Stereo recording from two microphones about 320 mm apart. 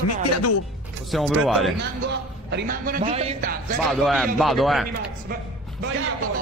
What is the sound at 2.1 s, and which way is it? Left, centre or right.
A man's voice, right.